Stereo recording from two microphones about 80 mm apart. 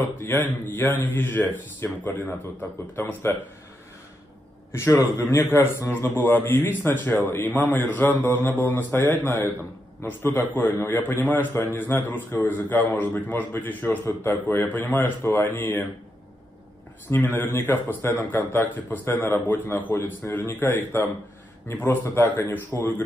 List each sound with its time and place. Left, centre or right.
0.2 s a man's voice: left
4.7 s a man's voice: left
17.1 s a man's voice: left